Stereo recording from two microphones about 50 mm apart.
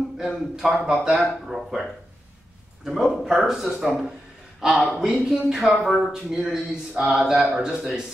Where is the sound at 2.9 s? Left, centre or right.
Centre.